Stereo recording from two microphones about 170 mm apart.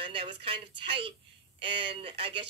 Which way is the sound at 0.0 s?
30° right (ahead or behind).